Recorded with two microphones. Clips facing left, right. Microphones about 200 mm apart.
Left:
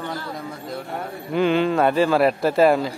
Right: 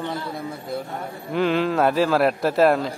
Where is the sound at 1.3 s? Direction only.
Centre (ahead or behind).